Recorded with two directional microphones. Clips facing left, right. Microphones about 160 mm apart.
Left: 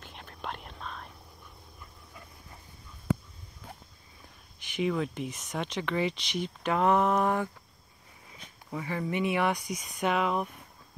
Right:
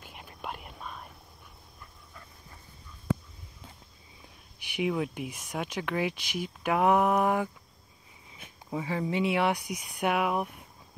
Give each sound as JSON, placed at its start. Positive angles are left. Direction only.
{"t": 0.0, "sound": "whispering", "side_deg": -10}
{"t": 4.6, "sound": "speech", "side_deg": -10}
{"t": 8.6, "sound": "speech", "side_deg": -10}
{"t": 9.6, "sound": "speech", "side_deg": -60}
{"t": 9.9, "sound": "speech", "side_deg": -10}